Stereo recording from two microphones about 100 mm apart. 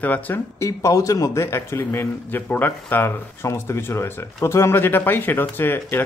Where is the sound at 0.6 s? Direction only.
35° left (ahead or behind).